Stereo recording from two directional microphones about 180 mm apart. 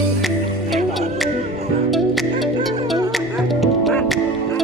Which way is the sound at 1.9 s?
Centre (ahead or behind).